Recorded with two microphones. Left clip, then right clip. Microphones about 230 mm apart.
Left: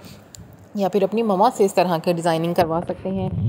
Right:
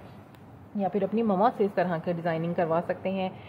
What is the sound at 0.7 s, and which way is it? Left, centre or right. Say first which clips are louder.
A woman's voice: left 8 dB; left.